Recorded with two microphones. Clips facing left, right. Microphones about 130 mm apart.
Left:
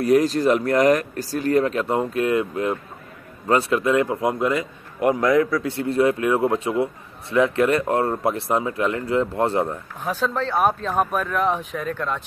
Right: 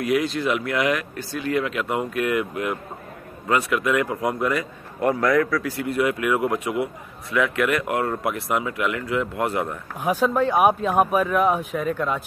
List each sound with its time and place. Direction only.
0.0 s a man's voice: 40° left (ahead or behind)
10.0 s speech: 10° right (ahead or behind)